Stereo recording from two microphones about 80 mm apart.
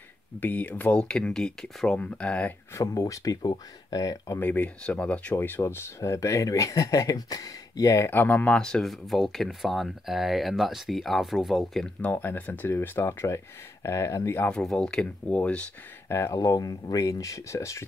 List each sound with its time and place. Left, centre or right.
0.4 s speech: left
2.7 s speech: left
4.4 s speech: left
5.3 s speech: left
8.1 s speech: left
8.5 s speech: centre
12.0 s speech: left
14.5 s speech: centre
16.1 s speech: left